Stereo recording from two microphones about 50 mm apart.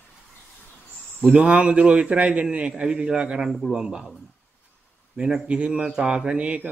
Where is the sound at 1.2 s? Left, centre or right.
Centre.